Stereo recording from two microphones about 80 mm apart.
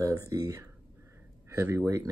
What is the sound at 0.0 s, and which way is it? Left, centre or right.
Speech, right.